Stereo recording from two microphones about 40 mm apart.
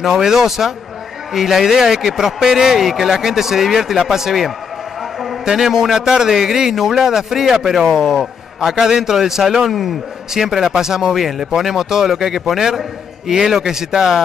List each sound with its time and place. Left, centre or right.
0.2 s a man's voice: centre